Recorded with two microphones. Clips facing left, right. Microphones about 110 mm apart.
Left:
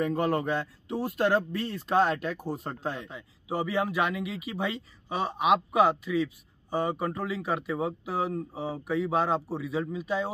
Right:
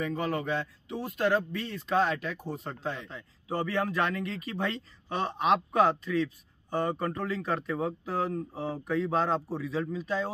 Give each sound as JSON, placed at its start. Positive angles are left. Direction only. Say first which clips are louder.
{"t": 0.0, "sound": "a man's voice", "louder": "left 4 dB", "side_deg": 50}
{"t": 1.7, "sound": "a man's voice", "louder": "left 2 dB", "side_deg": 0}
{"t": 2.5, "sound": "a man's voice", "louder": "left 3 dB", "side_deg": 45}
{"t": 3.0, "sound": "a man's voice", "louder": "left 2 dB", "side_deg": 10}